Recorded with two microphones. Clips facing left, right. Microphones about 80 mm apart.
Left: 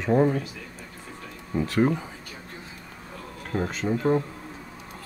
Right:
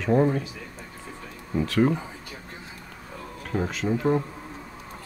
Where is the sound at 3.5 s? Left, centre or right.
Centre.